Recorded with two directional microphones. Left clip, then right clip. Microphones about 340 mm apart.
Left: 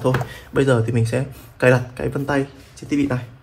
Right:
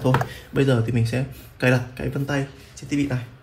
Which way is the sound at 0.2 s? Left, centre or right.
Centre.